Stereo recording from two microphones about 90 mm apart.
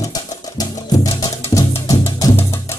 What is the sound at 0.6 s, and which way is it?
Music, 45° left (ahead or behind).